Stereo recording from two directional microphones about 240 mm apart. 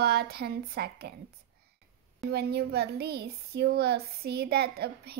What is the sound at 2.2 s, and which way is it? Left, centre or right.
Speech, right.